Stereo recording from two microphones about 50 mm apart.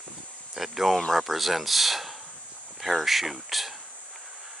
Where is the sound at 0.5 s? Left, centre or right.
Centre.